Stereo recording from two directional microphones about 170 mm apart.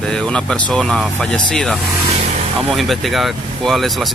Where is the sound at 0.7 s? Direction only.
5° left (ahead or behind).